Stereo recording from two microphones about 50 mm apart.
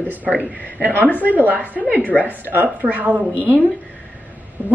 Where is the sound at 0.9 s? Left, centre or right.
Left.